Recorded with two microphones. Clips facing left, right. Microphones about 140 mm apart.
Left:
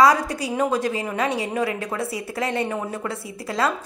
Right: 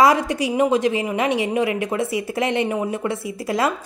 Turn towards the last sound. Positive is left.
turn(degrees=-20)  # may be behind; listen again after turning